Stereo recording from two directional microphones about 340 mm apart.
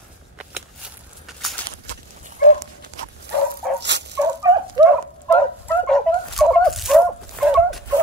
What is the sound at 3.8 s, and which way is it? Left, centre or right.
Dog, right.